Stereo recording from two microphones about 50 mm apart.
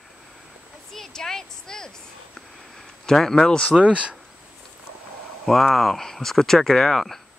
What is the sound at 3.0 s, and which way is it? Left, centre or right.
Speech, centre.